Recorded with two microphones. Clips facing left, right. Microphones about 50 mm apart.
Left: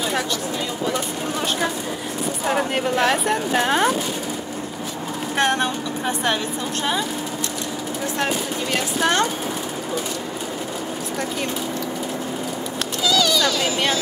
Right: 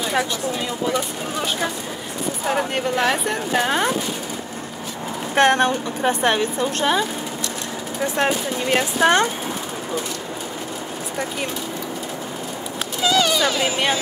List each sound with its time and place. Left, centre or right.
2.4 s speech: centre
5.3 s speech: right
8.2 s speech: right
13.0 s speech: right